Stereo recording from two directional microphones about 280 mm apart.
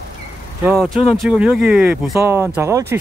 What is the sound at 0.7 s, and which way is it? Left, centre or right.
Speech, centre.